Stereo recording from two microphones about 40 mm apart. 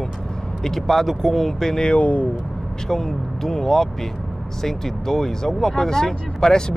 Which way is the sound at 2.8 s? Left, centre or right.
Centre.